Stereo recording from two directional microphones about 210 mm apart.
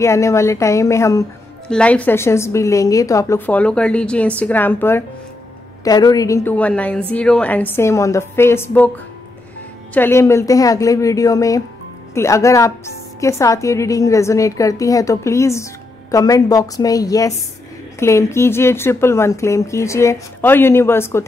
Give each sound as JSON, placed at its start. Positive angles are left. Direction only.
{"t": 0.0, "sound": "a woman's voice", "side_deg": 15}